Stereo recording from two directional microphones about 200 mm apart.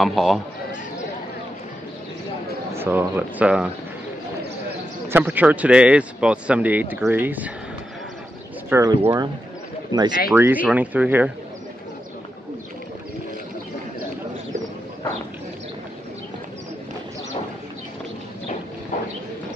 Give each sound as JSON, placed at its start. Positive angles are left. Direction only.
{"t": 0.0, "sound": "a man's voice", "side_deg": 0}
{"t": 2.7, "sound": "speech", "side_deg": -10}
{"t": 5.0, "sound": "speech", "side_deg": -10}
{"t": 8.6, "sound": "speech", "side_deg": -10}
{"t": 10.3, "sound": "speech", "side_deg": -10}